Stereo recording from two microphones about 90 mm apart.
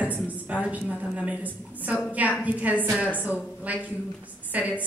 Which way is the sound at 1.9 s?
15° right (ahead or behind).